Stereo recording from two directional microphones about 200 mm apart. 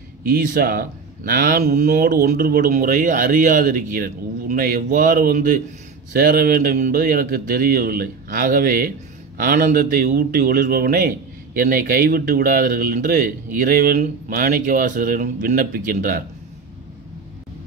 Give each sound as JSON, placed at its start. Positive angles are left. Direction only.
{"t": 0.3, "sound": "a man's voice", "side_deg": -50}